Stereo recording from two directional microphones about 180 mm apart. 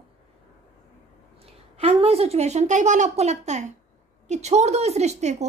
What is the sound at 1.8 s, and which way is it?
Speech, 35° right (ahead or behind).